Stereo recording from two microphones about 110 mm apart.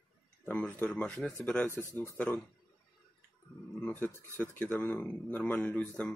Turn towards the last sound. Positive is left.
turn(degrees=10)  # may be behind; listen again after turning